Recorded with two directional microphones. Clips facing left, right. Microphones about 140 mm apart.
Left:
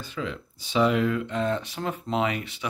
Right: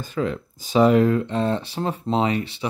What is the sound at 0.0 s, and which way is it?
Speech, 45° right (ahead or behind).